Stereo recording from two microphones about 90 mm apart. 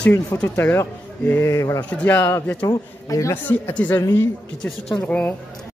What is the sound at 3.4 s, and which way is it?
Speech, 15° left (ahead or behind).